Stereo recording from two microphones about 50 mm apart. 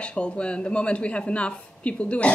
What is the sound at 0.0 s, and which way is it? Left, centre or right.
Speech, left.